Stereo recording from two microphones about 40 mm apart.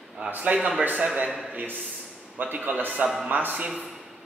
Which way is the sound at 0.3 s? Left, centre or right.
Right.